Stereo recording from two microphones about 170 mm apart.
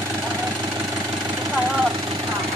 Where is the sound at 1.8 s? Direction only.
25° right (ahead or behind).